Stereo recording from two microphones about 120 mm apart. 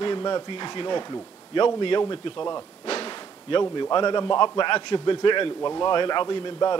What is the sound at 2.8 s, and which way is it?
Whip, 60° left (ahead or behind).